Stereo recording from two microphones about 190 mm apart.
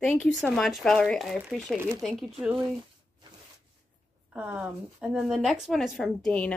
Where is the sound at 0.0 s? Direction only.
5° left (ahead or behind).